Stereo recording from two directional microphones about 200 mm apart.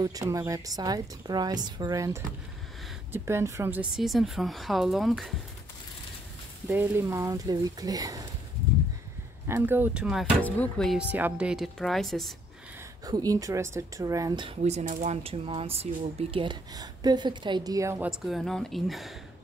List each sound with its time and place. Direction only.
0.0 s speech: 15° right (ahead or behind); by 5.3 s centre (ahead or behind)
6.7 s speech: 10° right (ahead or behind)
9.5 s speech: 10° right (ahead or behind)
13.0 s speech: 20° right (ahead or behind); by 19.1 s centre (ahead or behind)